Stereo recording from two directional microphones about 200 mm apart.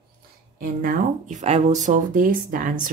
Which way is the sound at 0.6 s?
40° right (ahead or behind).